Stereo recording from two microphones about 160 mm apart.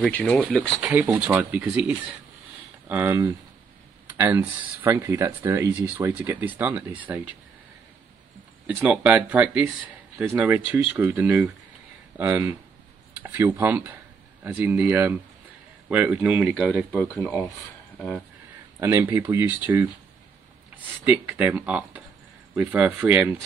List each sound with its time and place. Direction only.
0.0 s speech: 10° left (ahead or behind); by 7.2 s 10° right (ahead or behind)
8.8 s speech: 10° right (ahead or behind)
16.9 s speech: 10° left (ahead or behind)
18.8 s speech: 15° right (ahead or behind)
21.0 s speech: 10° right (ahead or behind)